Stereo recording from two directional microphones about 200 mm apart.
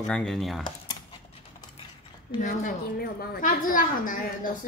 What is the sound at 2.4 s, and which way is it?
A woman's voice, 45° left (ahead or behind).